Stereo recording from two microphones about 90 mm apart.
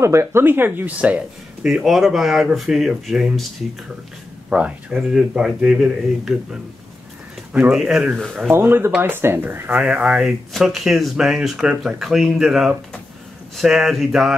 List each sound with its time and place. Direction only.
0.0 s speech: 30° right (ahead or behind); by 1.7 s 15° right (ahead or behind)
1.7 s speech: 5° right (ahead or behind)
4.5 s speech: 10° right (ahead or behind)
7.7 s speech: 5° right (ahead or behind)
8.5 s speech: 25° right (ahead or behind); by 14.3 s 5° right (ahead or behind)